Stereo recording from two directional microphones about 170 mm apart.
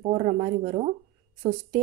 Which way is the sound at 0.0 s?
45° right (ahead or behind).